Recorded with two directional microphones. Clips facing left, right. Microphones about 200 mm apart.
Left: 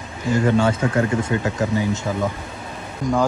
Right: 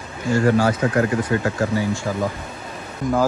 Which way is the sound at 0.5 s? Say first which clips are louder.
Right 1 dB; 25° left (ahead or behind).